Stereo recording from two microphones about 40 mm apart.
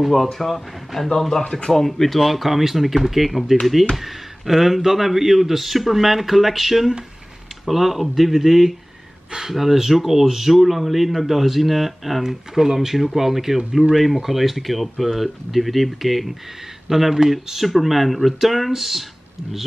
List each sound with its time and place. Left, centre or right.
0.0 s speech: centre
1.4 s speech: left
1.7 s speech: centre